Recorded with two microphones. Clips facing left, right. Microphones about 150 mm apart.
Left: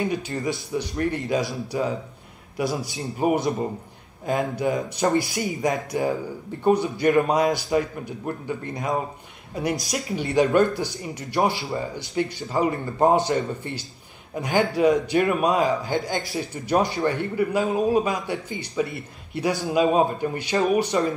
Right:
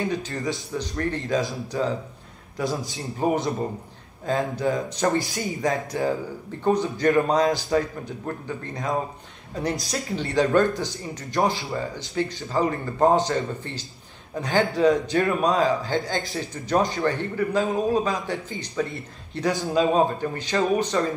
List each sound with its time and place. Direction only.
0.0 s a man's voice: 15° left (ahead or behind)
3.2 s a man's voice: 10° left (ahead or behind)